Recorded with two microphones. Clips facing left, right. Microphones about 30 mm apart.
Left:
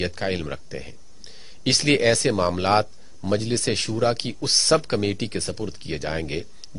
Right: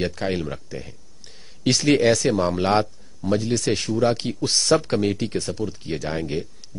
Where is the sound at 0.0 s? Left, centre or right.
Centre.